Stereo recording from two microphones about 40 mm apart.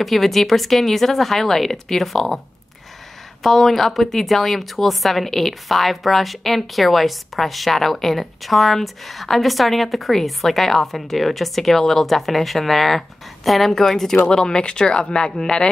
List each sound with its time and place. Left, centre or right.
0.0 s speech: centre
3.4 s speech: centre; by 15.7 s left